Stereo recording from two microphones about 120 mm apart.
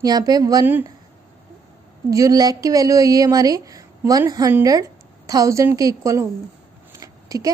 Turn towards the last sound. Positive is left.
turn(degrees=-30)  # may be behind; listen again after turning